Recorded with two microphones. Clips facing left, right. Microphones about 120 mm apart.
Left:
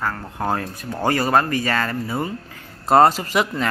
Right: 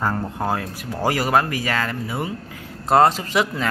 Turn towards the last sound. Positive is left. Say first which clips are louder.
# even
turn(degrees=0)  # may be behind; listen again after turning